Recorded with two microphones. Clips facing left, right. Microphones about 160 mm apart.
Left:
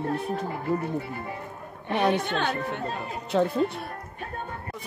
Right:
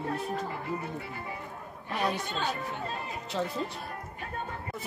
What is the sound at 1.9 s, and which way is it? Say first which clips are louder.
Speech: left 7 dB; 65° left (ahead or behind).